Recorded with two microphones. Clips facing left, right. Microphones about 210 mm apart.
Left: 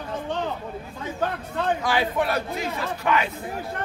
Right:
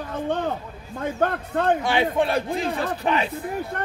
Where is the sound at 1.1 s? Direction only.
55° right (ahead or behind).